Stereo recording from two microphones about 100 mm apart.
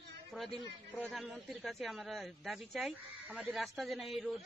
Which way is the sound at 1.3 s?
Centre (ahead or behind).